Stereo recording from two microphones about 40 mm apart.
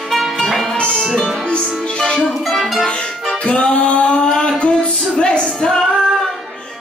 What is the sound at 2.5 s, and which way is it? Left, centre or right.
Music, centre.